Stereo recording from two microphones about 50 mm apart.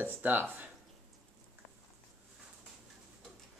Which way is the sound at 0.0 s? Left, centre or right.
Right.